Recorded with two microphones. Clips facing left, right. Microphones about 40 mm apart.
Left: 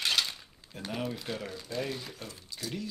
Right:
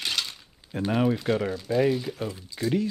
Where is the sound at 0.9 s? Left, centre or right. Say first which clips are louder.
Right 11 dB; right.